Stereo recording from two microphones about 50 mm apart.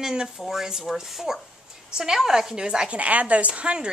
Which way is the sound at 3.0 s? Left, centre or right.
Right.